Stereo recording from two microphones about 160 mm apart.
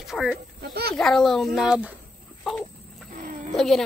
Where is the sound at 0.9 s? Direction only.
5° left (ahead or behind).